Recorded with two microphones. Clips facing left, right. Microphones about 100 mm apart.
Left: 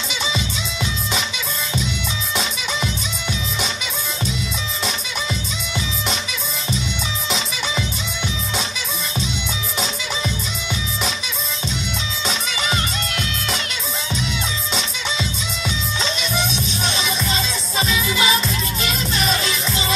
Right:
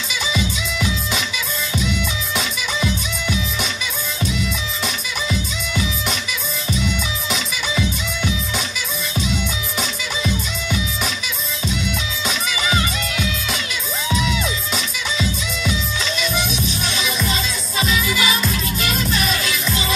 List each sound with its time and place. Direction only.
0.1 s music: 25° left (ahead or behind)
2.3 s music: 25° left (ahead or behind)
4.8 s music: 25° left (ahead or behind)
7.2 s music: 25° left (ahead or behind)
14.7 s music: 30° left (ahead or behind)